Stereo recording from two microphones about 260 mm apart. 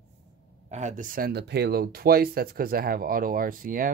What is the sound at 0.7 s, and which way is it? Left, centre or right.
Speech, right.